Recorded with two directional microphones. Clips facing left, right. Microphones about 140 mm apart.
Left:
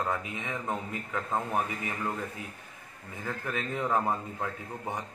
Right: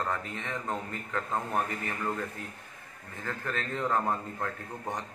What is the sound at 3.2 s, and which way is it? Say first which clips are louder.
Speech: left 1 dB; 10° left (ahead or behind).